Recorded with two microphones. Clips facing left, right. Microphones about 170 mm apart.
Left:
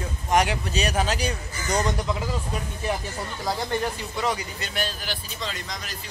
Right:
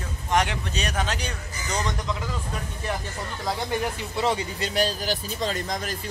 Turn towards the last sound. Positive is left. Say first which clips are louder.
# right 6 dB
turn(degrees=-50)  # may be behind; listen again after turning